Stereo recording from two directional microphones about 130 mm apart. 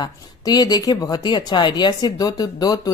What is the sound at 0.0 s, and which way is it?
Speech, 30° left (ahead or behind).